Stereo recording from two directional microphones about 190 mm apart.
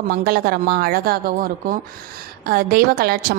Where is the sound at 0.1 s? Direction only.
50° right (ahead or behind).